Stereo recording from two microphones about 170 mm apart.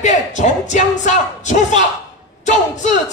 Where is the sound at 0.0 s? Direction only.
45° left (ahead or behind).